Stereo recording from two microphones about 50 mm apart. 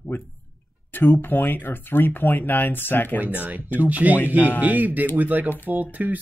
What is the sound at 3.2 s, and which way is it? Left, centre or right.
Speech, right.